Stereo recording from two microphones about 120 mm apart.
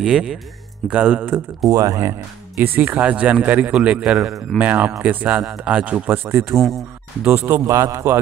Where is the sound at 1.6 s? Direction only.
30° right (ahead or behind).